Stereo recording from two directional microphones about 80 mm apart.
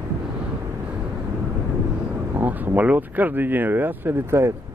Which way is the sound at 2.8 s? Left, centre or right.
Centre.